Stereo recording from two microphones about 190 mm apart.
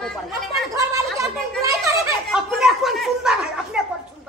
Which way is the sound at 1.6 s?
15° right (ahead or behind).